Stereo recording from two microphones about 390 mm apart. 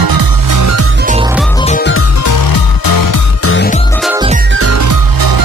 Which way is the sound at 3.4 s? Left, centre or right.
Left.